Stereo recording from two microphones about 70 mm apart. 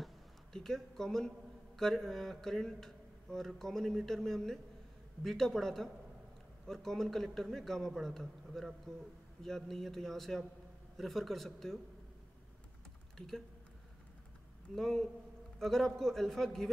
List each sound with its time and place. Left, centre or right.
0.0 s a sound: centre
1.8 s speech: centre
14.8 s speech: centre